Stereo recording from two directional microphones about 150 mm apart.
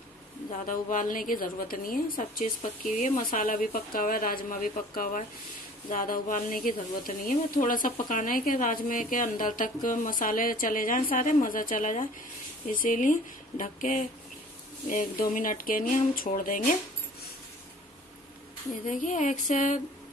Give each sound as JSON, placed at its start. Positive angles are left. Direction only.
{"t": 0.7, "sound": "a woman's voice", "side_deg": 60}
{"t": 18.9, "sound": "speech", "side_deg": 60}